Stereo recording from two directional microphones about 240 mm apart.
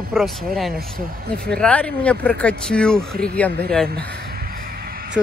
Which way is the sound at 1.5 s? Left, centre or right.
Centre.